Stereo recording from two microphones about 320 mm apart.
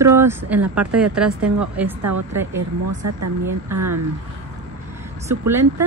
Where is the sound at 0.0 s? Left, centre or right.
Centre.